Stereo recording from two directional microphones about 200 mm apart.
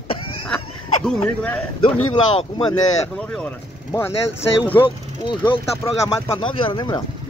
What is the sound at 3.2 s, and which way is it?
Speech, 5° left (ahead or behind).